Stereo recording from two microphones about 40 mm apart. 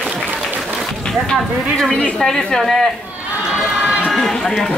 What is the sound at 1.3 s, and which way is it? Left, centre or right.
Speech, centre.